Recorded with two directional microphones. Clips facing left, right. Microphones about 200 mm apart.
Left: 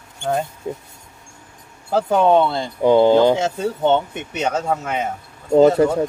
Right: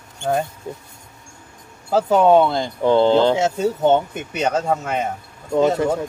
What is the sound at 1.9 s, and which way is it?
Speech, 5° right (ahead or behind).